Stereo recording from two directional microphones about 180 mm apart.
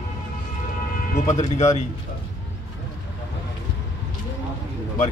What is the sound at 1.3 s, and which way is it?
Speech, 40° left (ahead or behind).